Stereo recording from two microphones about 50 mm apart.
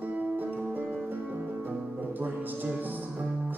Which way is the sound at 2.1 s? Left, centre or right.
Right.